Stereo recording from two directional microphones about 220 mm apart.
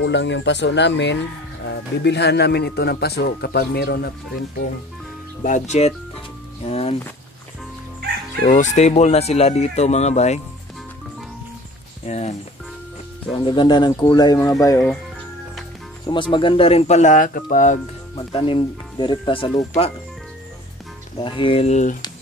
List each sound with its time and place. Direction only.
0.0 s speech: 55° left (ahead or behind)
5.4 s speech: 35° left (ahead or behind)
8.5 s speech: 35° left (ahead or behind)
12.1 s speech: 30° left (ahead or behind)
13.4 s speech: 20° left (ahead or behind)
16.1 s speech: 20° left (ahead or behind)
18.1 s speech: 25° left (ahead or behind)
21.2 s speech: 25° left (ahead or behind)